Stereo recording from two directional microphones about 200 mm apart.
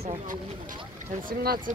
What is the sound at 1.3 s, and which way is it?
Speech, 45° right (ahead or behind).